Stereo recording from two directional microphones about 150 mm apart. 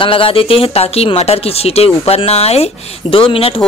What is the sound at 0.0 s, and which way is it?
Speech, 35° left (ahead or behind).